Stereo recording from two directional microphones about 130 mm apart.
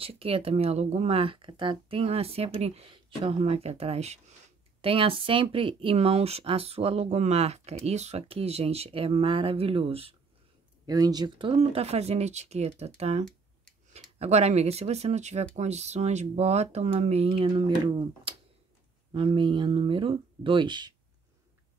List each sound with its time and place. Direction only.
0.0 s speech: 45° right (ahead or behind)
10.9 s speech: 30° right (ahead or behind)